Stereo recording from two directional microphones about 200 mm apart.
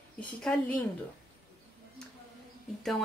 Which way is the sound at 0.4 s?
5° left (ahead or behind).